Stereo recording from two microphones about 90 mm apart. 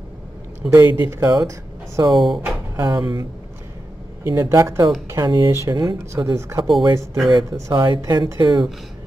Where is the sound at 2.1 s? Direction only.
Centre (ahead or behind).